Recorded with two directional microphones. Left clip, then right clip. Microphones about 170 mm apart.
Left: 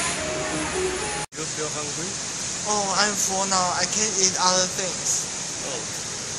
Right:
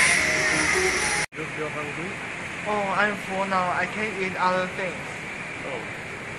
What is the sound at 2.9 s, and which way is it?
Speech, 25° left (ahead or behind).